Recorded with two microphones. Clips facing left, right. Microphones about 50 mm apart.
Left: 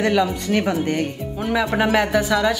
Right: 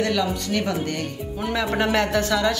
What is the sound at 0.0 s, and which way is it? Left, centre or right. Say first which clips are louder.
Speech: left 4 dB; left.